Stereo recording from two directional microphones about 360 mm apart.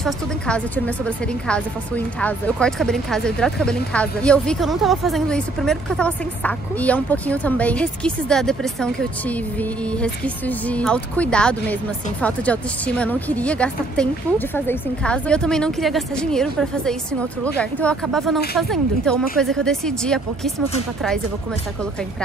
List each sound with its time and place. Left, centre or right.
0.0 s a woman's voice: centre